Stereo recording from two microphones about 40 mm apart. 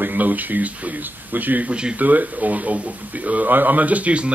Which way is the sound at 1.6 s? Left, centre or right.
Right.